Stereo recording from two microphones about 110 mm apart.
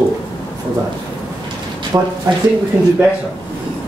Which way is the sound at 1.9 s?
25° right (ahead or behind).